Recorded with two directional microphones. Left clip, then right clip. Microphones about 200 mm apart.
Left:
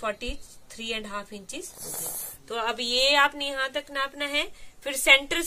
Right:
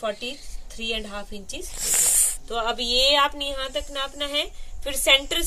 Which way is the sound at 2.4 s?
15° left (ahead or behind).